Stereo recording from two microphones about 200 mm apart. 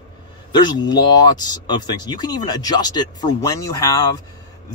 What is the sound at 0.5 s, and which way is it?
Speech, 20° left (ahead or behind).